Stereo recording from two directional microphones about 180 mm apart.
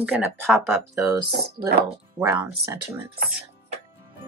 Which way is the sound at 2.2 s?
15° right (ahead or behind).